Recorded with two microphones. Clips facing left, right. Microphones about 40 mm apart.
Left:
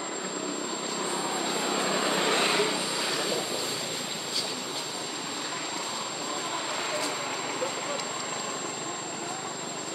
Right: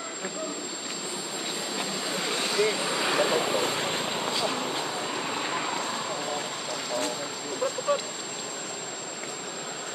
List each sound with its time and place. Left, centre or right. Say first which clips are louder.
2.0 s vehicle: left 5 dB; left
2.9 s vehicle: right 5 dB; right